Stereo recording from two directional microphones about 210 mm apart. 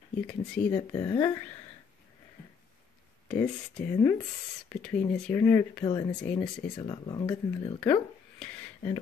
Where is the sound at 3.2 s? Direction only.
5° left (ahead or behind).